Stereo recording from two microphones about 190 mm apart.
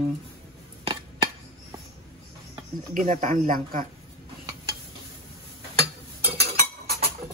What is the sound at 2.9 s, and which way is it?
Speech, 45° right (ahead or behind).